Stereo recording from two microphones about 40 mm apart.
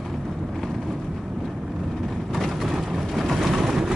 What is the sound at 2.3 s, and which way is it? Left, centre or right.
Vehicle, centre.